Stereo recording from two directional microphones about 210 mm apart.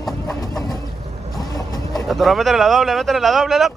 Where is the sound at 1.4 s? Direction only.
15° left (ahead or behind).